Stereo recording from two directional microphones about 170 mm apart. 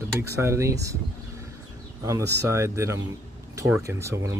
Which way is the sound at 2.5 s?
15° right (ahead or behind).